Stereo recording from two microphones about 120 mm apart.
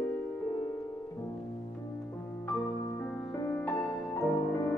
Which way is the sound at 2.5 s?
30° left (ahead or behind).